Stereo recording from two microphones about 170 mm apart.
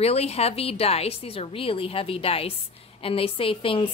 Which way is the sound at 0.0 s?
35° left (ahead or behind).